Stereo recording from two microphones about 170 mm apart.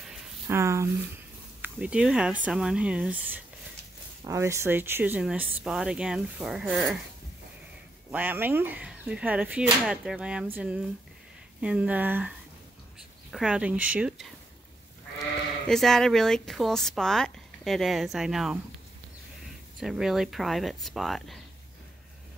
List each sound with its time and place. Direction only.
0.5 s a sound: 15° right (ahead or behind)
1.6 s speech: 5° right (ahead or behind)
8.1 s speech: 10° right (ahead or behind)
15.7 s speech: centre (ahead or behind)
19.8 s speech: 5° right (ahead or behind)